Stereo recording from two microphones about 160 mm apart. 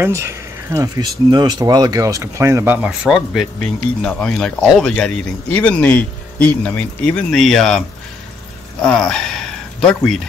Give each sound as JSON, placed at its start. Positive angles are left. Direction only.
{"t": 0.0, "sound": "speech", "side_deg": -15}
{"t": 8.8, "sound": "speech", "side_deg": 5}